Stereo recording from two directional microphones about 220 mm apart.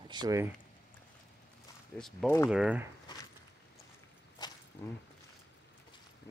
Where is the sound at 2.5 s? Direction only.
5° right (ahead or behind).